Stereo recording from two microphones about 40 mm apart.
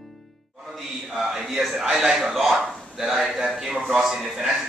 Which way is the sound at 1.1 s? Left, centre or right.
Centre.